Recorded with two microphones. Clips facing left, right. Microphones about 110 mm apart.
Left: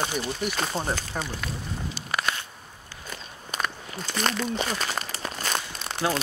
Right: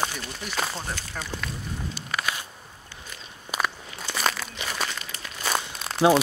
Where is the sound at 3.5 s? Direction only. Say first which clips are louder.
Right 2 dB; 5° right (ahead or behind).